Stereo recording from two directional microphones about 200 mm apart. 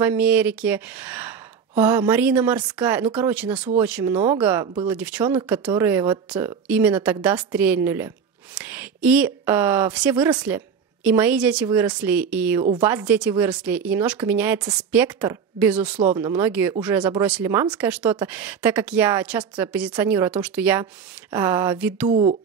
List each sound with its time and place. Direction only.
0.0 s speech: 10° right (ahead or behind)
16.0 s speech: 25° right (ahead or behind)
16.3 s speech: 10° right (ahead or behind)